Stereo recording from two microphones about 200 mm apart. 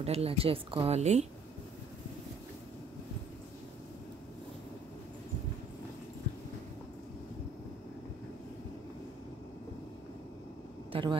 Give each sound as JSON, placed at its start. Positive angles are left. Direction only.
{"t": 0.0, "sound": "speech", "side_deg": -30}
{"t": 10.9, "sound": "vehicle", "side_deg": -25}